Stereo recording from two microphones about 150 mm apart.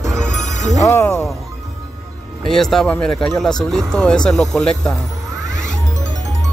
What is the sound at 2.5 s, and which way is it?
Speech, centre (ahead or behind).